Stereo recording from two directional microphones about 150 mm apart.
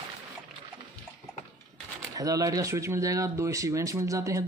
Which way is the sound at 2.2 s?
25° right (ahead or behind).